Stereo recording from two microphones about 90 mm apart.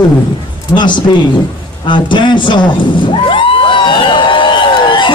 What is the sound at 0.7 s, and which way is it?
A man's voice, 55° left (ahead or behind).